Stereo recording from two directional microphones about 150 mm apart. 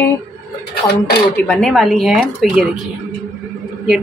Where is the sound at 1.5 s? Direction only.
5° left (ahead or behind).